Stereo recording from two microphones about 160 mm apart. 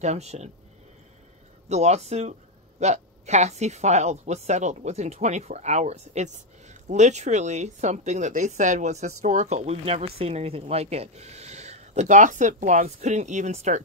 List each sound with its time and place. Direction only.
0.0 s a woman's voice: 45° right (ahead or behind)
1.7 s a woman's voice: 45° right (ahead or behind)